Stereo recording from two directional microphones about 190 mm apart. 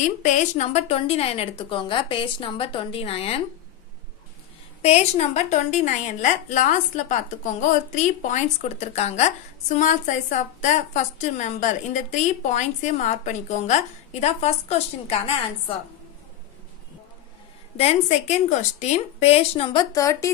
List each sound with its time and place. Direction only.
0.2 s a woman's voice: 40° left (ahead or behind)
4.8 s a woman's voice: 35° left (ahead or behind)
17.7 s a woman's voice: 35° left (ahead or behind); by 20.2 s 15° left (ahead or behind)